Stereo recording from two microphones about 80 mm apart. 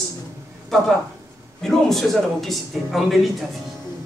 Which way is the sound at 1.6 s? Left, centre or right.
Centre.